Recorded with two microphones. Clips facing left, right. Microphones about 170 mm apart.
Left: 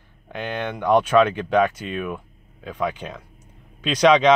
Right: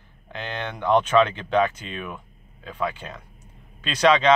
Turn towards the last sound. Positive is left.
turn(degrees=10)  # may be behind; listen again after turning